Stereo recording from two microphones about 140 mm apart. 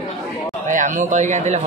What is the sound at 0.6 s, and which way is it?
Speech, 65° right (ahead or behind).